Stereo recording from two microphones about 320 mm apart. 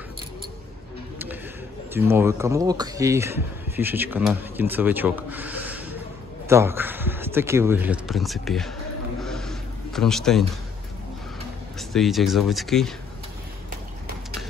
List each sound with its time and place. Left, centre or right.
2.0 s speech: centre
9.2 s a sound: centre
11.9 s speech: centre